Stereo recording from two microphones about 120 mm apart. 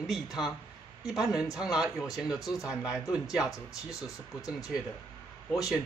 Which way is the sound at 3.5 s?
30° left (ahead or behind).